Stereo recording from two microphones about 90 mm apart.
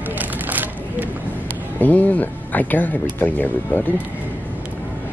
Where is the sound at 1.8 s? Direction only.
20° left (ahead or behind).